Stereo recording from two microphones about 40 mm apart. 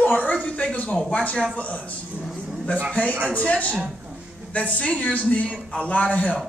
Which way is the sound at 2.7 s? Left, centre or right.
Left.